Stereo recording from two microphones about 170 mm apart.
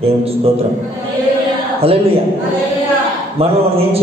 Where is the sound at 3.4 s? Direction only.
35° right (ahead or behind).